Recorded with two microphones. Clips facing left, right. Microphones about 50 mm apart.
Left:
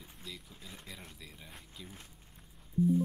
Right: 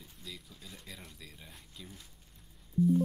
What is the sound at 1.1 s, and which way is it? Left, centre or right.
Speech, centre.